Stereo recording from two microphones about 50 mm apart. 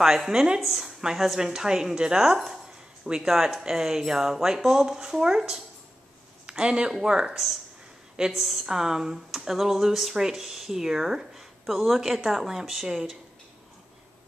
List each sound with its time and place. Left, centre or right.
0.0 s a woman's voice: centre